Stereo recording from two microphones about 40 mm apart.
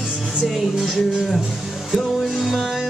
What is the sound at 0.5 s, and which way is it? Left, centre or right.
Music, centre.